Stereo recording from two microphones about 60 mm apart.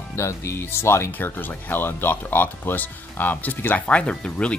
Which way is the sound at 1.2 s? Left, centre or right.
Left.